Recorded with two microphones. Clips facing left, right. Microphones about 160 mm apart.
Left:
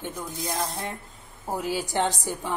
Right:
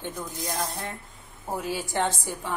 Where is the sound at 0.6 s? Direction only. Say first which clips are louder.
Left 1 dB; 20° left (ahead or behind).